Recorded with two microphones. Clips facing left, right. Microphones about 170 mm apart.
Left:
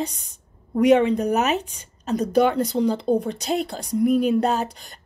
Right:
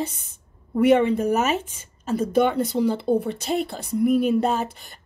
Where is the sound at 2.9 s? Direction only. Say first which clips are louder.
Even; 15° left (ahead or behind).